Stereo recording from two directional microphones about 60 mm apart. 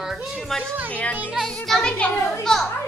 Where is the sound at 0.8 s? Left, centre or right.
Left; by 2.7 s centre.